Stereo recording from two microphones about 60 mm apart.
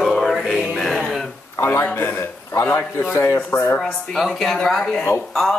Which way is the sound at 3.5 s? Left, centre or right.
Left.